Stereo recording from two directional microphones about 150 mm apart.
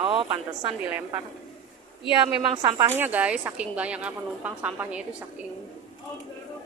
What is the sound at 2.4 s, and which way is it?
Speech, 30° right (ahead or behind).